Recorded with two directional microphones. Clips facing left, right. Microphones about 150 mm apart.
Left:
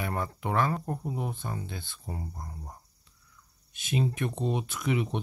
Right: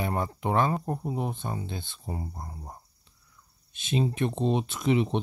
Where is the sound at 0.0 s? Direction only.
25° right (ahead or behind).